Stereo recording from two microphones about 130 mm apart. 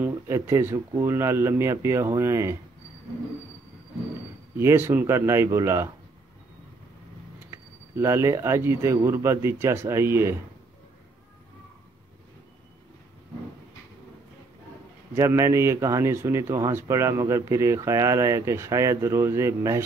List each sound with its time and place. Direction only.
0.0 s speech: 20° right (ahead or behind)
4.6 s speech: 20° right (ahead or behind)
7.9 s speech: 20° right (ahead or behind)
15.1 s speech: 25° right (ahead or behind)